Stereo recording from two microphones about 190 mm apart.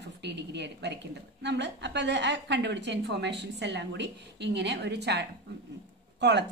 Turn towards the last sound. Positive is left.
turn(degrees=-65)  # may be behind; listen again after turning